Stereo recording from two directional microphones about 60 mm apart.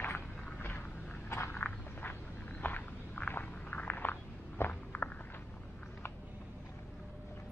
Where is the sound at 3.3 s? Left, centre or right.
Left.